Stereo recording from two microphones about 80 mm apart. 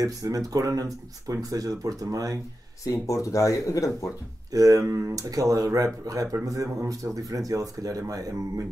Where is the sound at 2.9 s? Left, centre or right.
Left.